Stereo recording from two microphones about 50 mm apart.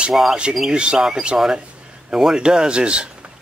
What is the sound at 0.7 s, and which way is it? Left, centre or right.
Speech, centre.